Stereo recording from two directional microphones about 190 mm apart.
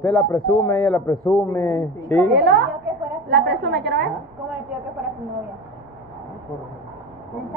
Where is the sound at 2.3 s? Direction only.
65° right (ahead or behind).